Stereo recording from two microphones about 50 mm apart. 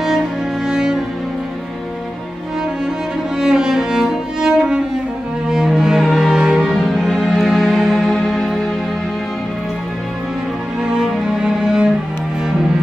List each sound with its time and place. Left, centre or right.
0.7 s music: centre
3.3 s music: centre
5.5 s cello: centre
6.6 s music: centre
10.8 s music: centre